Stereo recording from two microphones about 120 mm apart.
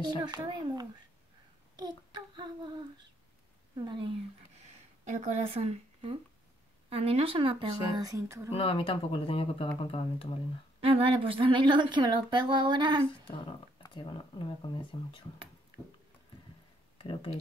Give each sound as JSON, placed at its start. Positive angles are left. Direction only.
{"t": 0.2, "sound": "speech", "side_deg": -35}
{"t": 5.0, "sound": "speech", "side_deg": -80}
{"t": 8.0, "sound": "speech", "side_deg": -25}
{"t": 8.5, "sound": "speech", "side_deg": 50}
{"t": 10.8, "sound": "speech", "side_deg": -55}
{"t": 13.4, "sound": "speech", "side_deg": 40}
{"t": 17.0, "sound": "speech", "side_deg": 45}